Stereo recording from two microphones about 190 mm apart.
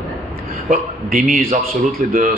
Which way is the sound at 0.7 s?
45° right (ahead or behind).